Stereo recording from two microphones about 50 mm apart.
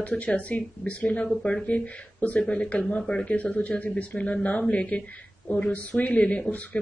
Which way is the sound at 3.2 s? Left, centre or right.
Left.